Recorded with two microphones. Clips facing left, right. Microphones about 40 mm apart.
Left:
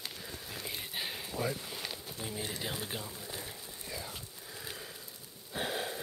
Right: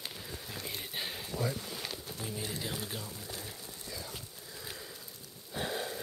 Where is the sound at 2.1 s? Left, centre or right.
Centre.